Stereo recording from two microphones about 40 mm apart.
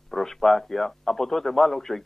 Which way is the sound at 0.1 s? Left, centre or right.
Centre.